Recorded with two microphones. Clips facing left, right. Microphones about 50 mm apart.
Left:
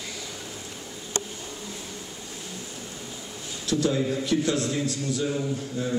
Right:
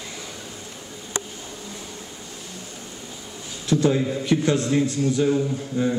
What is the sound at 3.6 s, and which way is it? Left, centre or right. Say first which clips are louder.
A man's voice: right 4 dB; right.